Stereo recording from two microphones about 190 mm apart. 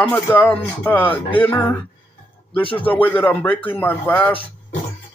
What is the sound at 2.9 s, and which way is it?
A man's voice, 10° left (ahead or behind).